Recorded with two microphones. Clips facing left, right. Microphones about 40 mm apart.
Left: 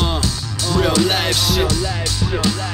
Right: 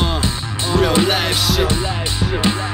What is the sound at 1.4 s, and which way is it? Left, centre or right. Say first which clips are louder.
Music: even; centre.